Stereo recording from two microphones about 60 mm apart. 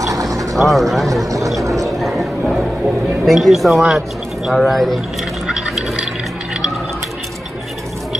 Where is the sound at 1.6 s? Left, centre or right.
Right.